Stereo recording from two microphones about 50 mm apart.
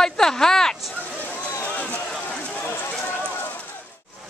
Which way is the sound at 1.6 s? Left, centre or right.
Left.